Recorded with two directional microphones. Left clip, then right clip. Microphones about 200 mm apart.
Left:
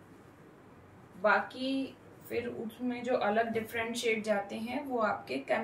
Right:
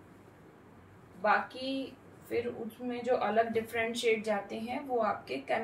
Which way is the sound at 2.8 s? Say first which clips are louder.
Even; 10° left (ahead or behind).